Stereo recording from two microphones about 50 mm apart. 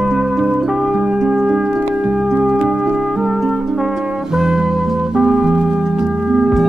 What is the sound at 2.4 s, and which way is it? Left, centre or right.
Music, centre.